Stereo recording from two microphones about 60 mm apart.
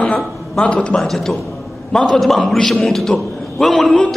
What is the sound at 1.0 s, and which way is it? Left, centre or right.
A man's voice, centre.